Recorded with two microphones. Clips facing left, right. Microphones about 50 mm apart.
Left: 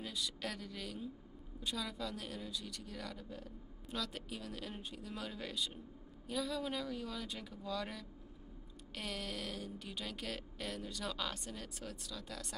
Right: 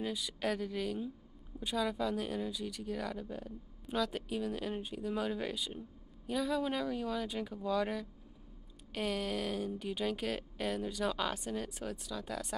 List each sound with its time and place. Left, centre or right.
0.0 s speech: centre